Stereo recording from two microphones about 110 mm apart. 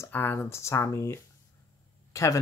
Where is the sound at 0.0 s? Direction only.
20° left (ahead or behind).